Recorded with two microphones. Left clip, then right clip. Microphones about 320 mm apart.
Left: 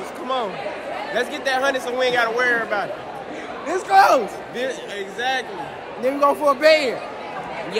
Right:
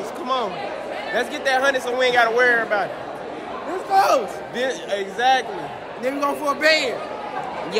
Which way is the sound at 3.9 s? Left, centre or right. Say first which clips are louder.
Left 3 dB; left.